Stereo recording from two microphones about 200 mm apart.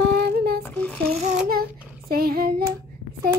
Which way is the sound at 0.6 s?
5° left (ahead or behind).